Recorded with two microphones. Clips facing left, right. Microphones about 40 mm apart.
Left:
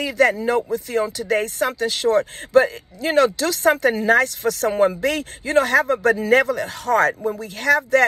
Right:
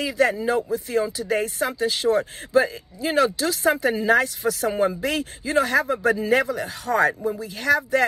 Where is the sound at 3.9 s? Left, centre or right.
Left.